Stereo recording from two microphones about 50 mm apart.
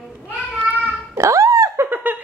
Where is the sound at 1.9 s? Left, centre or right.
Right.